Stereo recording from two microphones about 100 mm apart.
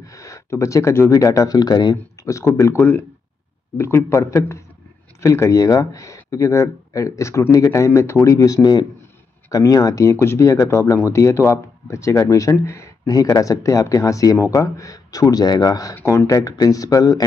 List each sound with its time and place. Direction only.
0.0 s speech: 30° left (ahead or behind)
2.2 s speech: 30° left (ahead or behind)
2.8 s a man's voice: 20° left (ahead or behind); by 15.9 s 40° left (ahead or behind)
15.9 s a man's voice: 25° left (ahead or behind)
16.3 s speech: 35° left (ahead or behind)